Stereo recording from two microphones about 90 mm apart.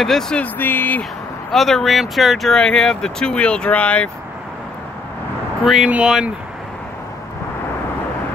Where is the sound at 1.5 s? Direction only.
Centre (ahead or behind).